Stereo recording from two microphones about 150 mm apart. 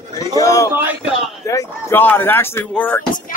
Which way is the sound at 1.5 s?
20° left (ahead or behind).